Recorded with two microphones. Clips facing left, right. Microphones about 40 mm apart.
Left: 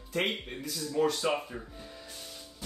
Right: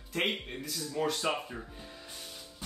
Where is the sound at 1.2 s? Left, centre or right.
Centre.